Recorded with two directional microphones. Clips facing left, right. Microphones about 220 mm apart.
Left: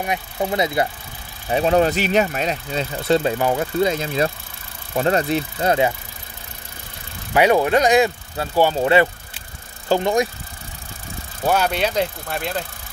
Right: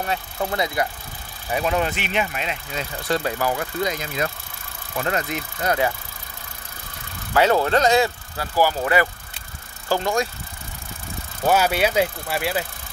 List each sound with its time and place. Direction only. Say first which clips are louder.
0.0 s speech: left 2 dB; 15° left (ahead or behind)
1.5 s speech: left 6 dB; 35° left (ahead or behind)
7.3 s speech: left 2 dB; 15° left (ahead or behind)
11.4 s speech: right 1 dB; 5° right (ahead or behind)